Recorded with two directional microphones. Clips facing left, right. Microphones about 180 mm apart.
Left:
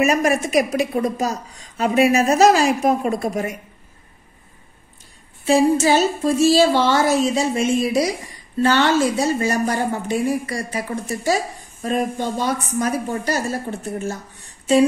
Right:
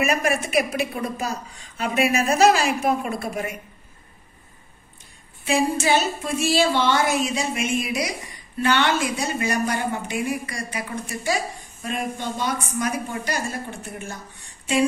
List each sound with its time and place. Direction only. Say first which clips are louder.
0.0 s a woman's voice: left 5 dB; 40° left (ahead or behind)
5.9 s a woman's voice: left 5 dB; 40° left (ahead or behind)